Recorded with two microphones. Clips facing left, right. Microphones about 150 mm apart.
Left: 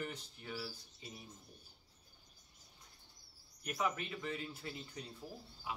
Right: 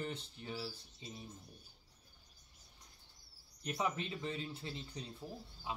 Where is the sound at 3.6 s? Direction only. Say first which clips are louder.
Even; 25° right (ahead or behind).